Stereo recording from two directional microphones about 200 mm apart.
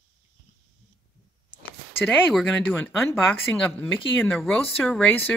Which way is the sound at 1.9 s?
10° left (ahead or behind).